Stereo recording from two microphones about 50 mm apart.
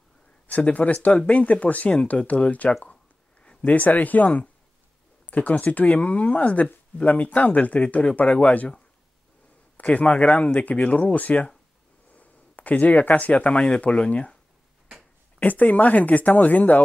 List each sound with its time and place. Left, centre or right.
0.5 s speech: left
9.8 s speech: left
15.3 s speech: left